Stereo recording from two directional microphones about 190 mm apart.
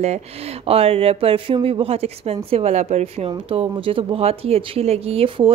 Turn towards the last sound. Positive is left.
turn(degrees=-30)  # may be behind; listen again after turning